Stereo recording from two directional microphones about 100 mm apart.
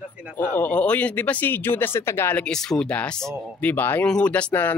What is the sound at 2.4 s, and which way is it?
Speech, 5° left (ahead or behind).